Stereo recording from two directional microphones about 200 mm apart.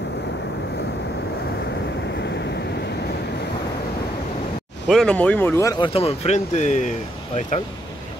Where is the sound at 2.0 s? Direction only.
60° left (ahead or behind).